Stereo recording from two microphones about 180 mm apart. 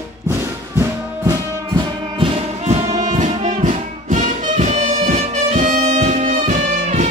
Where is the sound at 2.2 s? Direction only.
40° right (ahead or behind).